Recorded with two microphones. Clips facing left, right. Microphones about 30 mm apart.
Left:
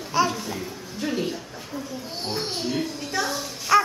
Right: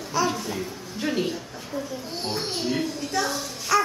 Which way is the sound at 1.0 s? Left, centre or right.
Centre.